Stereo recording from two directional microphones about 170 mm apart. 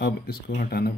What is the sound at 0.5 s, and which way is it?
Speech, 60° left (ahead or behind).